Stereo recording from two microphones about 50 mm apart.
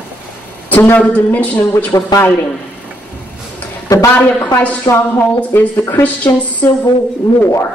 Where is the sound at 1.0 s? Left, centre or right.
Left.